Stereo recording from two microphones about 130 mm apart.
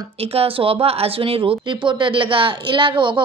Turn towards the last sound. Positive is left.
turn(degrees=-40)  # may be behind; listen again after turning